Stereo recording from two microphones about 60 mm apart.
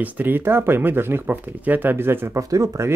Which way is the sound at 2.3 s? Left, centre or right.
Right.